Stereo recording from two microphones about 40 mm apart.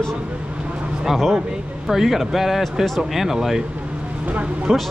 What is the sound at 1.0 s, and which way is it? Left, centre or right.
Speech, centre.